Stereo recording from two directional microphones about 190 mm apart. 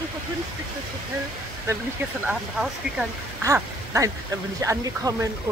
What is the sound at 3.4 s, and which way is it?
Speech, 15° right (ahead or behind).